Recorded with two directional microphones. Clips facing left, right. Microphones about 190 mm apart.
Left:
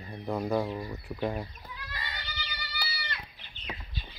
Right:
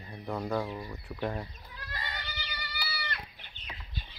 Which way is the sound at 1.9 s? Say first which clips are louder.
Right 3 dB; 50° right (ahead or behind).